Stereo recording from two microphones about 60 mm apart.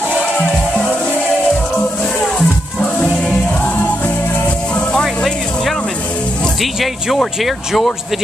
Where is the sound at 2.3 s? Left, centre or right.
Centre.